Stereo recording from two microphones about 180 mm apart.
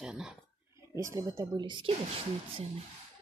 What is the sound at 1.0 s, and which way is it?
Speech, 15° right (ahead or behind).